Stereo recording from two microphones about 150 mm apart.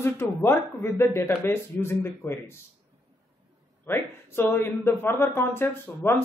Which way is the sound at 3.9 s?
15° left (ahead or behind).